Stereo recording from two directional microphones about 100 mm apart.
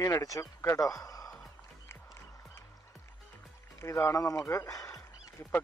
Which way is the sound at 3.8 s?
30° left (ahead or behind).